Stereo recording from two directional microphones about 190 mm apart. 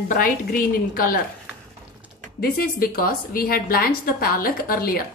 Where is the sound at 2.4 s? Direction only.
50° left (ahead or behind).